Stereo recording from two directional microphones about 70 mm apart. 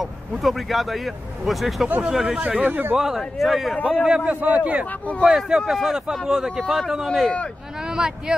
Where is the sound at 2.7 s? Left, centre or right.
Right.